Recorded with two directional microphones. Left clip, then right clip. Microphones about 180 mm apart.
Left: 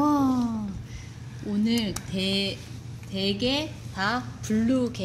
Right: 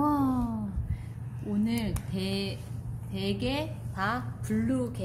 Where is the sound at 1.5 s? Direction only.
20° left (ahead or behind).